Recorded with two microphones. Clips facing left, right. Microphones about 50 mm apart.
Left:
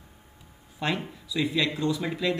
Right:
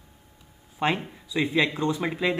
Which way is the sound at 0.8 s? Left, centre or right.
Right.